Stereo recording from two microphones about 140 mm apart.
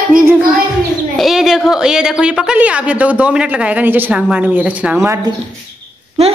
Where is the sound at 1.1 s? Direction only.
Centre (ahead or behind); by 5.2 s 15° right (ahead or behind).